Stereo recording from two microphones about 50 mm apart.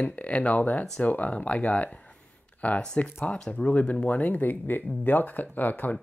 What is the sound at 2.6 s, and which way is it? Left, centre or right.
Speech, left.